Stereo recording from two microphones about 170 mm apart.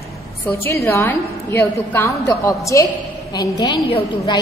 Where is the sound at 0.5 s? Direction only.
15° left (ahead or behind).